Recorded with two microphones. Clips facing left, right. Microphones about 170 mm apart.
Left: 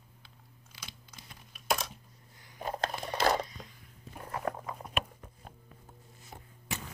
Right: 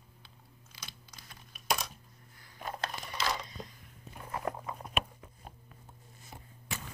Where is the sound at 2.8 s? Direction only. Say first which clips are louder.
Left 7 dB; 50° left (ahead or behind).